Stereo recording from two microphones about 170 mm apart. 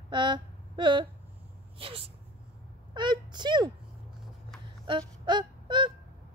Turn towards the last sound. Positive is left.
turn(degrees=-25)  # may be behind; listen again after turning